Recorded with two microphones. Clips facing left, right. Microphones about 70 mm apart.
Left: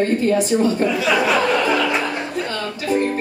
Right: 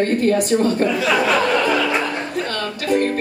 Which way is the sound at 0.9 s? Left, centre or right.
Centre.